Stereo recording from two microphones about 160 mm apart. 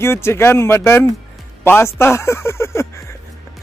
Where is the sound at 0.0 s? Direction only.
15° left (ahead or behind).